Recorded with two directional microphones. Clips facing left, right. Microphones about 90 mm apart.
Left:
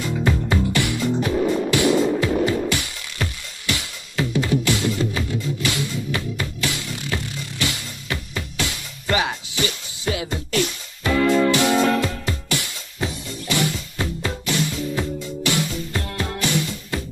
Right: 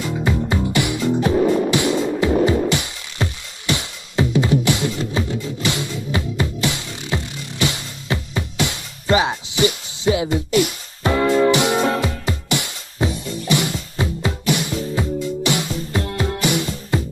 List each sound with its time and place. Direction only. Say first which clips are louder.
0.1 s music: even; 20° right (ahead or behind)
1.3 s music: right 5 dB; 65° right (ahead or behind)
1.7 s music: left 1 dB; 20° right (ahead or behind)
11.0 s music: right 2 dB; 30° right (ahead or behind)